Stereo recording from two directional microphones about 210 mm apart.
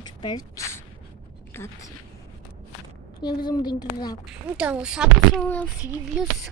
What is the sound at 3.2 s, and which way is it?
Speech, 20° left (ahead or behind).